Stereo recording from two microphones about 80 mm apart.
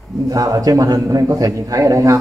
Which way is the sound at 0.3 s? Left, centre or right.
Right.